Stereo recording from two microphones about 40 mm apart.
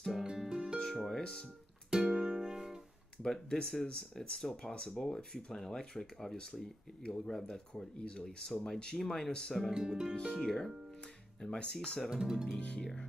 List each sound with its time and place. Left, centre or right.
0.1 s music: centre
0.7 s music: centre
1.9 s music: centre
3.2 s speech: centre
4.7 s speech: left
5.0 s speech: centre
9.8 s speech: centre
10.3 s speech: centre
12.1 s speech: centre
12.5 s speech: left